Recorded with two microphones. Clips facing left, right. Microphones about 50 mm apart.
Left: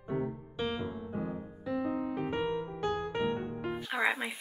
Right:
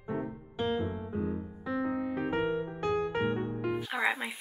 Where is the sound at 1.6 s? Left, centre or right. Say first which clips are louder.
Right 1 dB; right.